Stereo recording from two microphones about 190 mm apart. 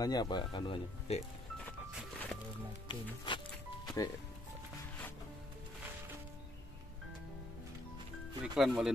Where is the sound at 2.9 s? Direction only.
25° left (ahead or behind).